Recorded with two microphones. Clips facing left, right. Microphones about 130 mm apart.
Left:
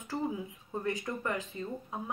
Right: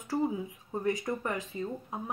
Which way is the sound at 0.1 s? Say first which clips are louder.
Right 4 dB; 15° right (ahead or behind).